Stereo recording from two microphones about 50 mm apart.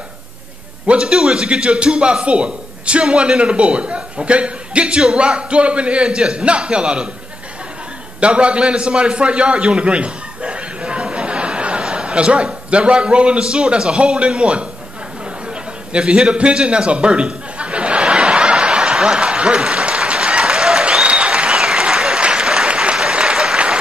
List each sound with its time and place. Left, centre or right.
0.8 s a man's voice: centre
8.2 s a man's voice: right
15.9 s chuckle: centre